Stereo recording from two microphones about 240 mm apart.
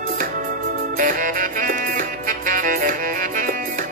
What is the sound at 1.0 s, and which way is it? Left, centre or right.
Music, right.